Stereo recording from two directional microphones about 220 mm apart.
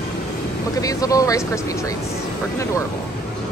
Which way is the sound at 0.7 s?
15° left (ahead or behind).